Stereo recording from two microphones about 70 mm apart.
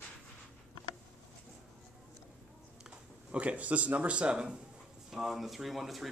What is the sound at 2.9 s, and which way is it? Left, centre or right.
Speech, centre.